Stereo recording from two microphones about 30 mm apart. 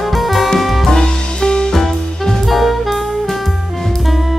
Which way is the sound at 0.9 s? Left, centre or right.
Left.